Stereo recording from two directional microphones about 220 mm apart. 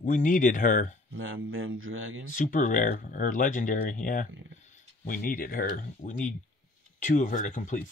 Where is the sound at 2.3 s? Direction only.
35° left (ahead or behind).